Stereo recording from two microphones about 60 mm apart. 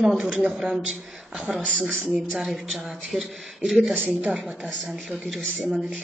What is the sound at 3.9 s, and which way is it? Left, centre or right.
Speech, right.